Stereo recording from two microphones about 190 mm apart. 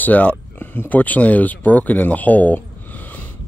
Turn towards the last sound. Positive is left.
turn(degrees=10)  # may be behind; listen again after turning